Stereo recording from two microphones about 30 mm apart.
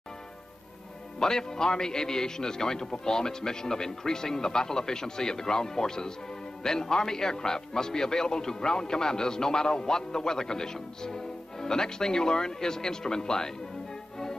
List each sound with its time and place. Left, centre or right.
1.2 s a man's voice: left